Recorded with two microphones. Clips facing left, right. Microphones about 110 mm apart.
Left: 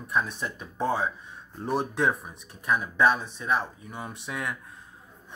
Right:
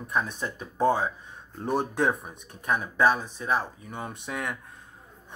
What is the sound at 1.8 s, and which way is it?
Speech, 45° right (ahead or behind).